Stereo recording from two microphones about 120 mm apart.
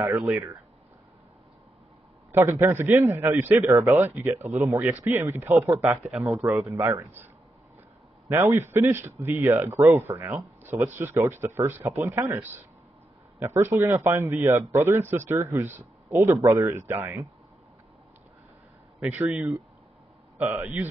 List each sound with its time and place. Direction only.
0.0 s a man's voice: 15° right (ahead or behind)
2.3 s a man's voice: 20° right (ahead or behind)
6.2 s speech: centre (ahead or behind)
6.6 s a man's voice: 25° right (ahead or behind)
8.3 s a man's voice: 20° right (ahead or behind)
19.2 s a man's voice: 10° right (ahead or behind)